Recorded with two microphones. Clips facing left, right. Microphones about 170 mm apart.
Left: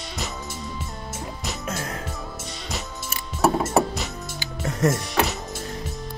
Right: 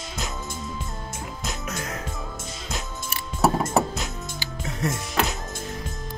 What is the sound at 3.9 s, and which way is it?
Music, centre (ahead or behind).